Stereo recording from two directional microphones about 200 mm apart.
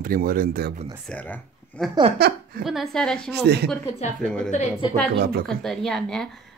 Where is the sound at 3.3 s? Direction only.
55° right (ahead or behind).